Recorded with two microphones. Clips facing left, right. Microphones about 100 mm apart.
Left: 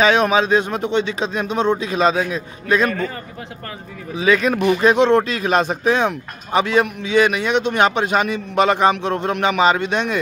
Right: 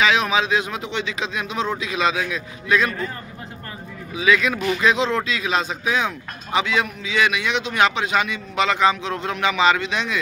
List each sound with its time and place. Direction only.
0.0 s speech: 40° left (ahead or behind)
4.2 s speech: 40° left (ahead or behind)